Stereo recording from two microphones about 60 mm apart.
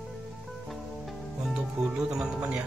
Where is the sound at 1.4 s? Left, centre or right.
Centre.